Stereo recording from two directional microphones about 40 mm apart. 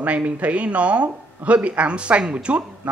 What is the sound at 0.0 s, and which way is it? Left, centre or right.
Speech, right.